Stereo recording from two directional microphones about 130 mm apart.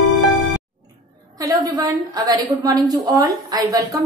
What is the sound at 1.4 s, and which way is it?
A woman's voice, 25° right (ahead or behind).